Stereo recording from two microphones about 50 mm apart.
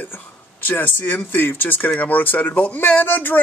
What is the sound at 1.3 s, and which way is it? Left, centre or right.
Speech, left.